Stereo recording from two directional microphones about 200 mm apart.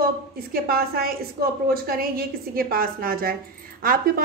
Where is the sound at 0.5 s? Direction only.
50° right (ahead or behind).